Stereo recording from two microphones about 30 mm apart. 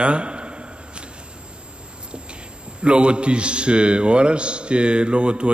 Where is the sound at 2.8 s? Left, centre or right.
Right.